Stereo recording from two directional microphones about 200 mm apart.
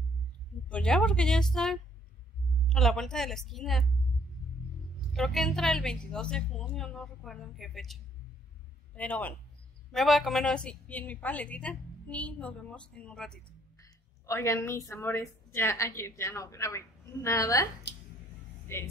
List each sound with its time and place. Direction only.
0.7 s a woman's voice: 5° left (ahead or behind)
5.1 s a woman's voice: centre (ahead or behind)
13.7 s speech: 15° left (ahead or behind)